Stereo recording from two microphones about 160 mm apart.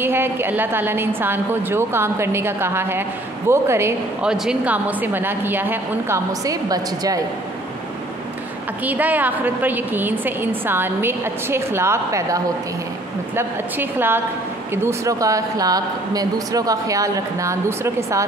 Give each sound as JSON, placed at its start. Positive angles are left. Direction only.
{"t": 0.0, "sound": "a woman's voice", "side_deg": -15}
{"t": 4.2, "sound": "a woman's voice", "side_deg": -5}
{"t": 8.8, "sound": "a woman's voice", "side_deg": -10}
{"t": 13.4, "sound": "a woman's voice", "side_deg": -15}